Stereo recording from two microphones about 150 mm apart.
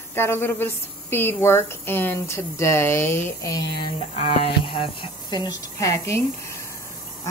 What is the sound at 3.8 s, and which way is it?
Speech, 40° left (ahead or behind).